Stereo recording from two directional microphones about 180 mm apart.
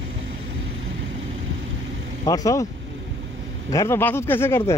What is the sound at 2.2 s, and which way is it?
Speech, 20° left (ahead or behind).